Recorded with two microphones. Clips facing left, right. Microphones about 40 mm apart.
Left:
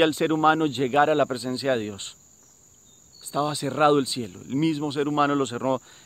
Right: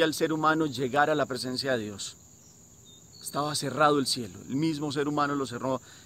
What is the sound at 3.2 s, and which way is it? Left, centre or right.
Speech, left.